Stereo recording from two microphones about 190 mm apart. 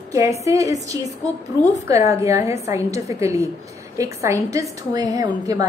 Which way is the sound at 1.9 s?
15° right (ahead or behind).